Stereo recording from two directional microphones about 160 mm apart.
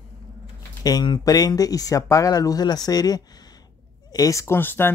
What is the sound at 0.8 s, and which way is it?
Speech, 25° left (ahead or behind).